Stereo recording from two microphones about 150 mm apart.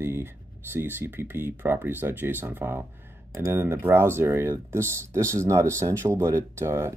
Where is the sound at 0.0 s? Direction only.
15° right (ahead or behind).